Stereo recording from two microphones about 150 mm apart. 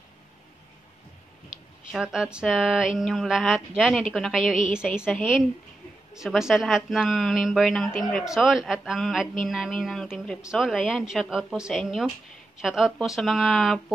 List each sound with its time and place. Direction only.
1.9 s a woman's voice: 5° right (ahead or behind)